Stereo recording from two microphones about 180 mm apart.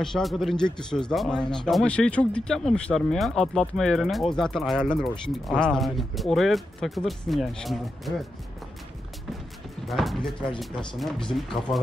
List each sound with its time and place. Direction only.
0.0 s speech: centre (ahead or behind)
9.8 s speech: centre (ahead or behind)